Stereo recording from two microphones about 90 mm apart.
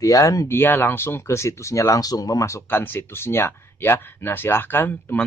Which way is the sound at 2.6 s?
25° left (ahead or behind).